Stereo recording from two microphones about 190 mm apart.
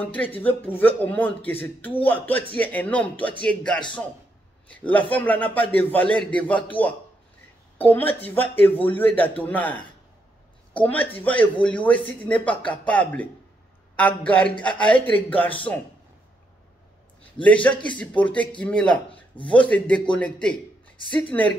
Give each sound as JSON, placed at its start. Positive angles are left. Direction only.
{"t": 0.0, "sound": "a man's voice", "side_deg": 10}
{"t": 17.4, "sound": "a man's voice", "side_deg": 5}
{"t": 19.0, "sound": "speech", "side_deg": 25}
{"t": 19.5, "sound": "a man's voice", "side_deg": 5}